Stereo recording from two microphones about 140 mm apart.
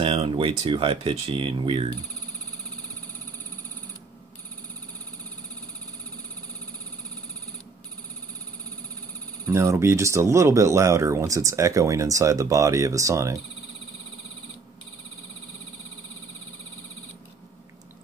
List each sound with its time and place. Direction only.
0.0 s speech: 40° right (ahead or behind)
9.5 s speech: 20° right (ahead or behind)